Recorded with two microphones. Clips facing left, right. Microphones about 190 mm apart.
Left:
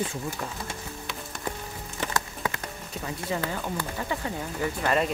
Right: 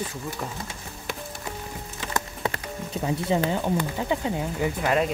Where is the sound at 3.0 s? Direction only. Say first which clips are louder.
Right 7 dB; 20° right (ahead or behind).